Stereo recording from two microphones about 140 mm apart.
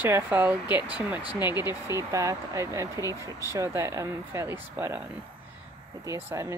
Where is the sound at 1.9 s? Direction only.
20° right (ahead or behind).